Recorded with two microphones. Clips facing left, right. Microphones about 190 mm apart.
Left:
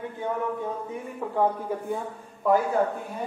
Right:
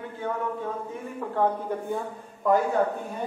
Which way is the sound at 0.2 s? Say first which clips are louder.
Left 1 dB; 15° left (ahead or behind).